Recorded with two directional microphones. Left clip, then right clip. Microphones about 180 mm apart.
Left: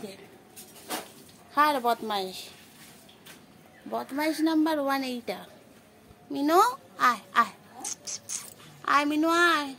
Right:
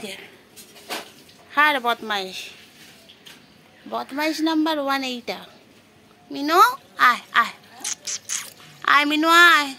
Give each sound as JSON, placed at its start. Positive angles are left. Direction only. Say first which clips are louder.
{"t": 1.5, "sound": "a woman's voice", "louder": "right 5 dB", "side_deg": -5}
{"t": 3.9, "sound": "a woman's voice", "louder": "right 5 dB", "side_deg": 0}
{"t": 6.3, "sound": "a child's voice", "louder": "right 6 dB", "side_deg": 15}
{"t": 6.7, "sound": "a sound", "louder": "right 7 dB", "side_deg": 0}